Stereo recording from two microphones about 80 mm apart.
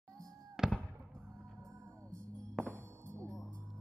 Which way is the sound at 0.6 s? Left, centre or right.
Centre.